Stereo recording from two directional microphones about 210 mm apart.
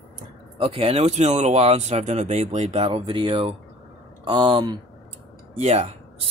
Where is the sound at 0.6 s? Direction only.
25° right (ahead or behind).